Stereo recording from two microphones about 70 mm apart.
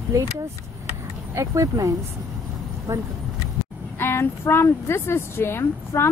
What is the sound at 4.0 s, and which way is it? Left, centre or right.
Speech, left.